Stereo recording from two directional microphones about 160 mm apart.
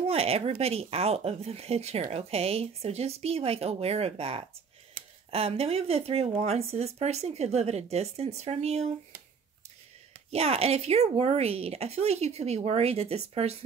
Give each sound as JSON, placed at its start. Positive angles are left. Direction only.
{"t": 0.0, "sound": "speech", "side_deg": -40}
{"t": 10.3, "sound": "speech", "side_deg": -40}